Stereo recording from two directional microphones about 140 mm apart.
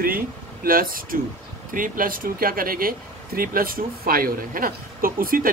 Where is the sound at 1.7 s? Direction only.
75° right (ahead or behind).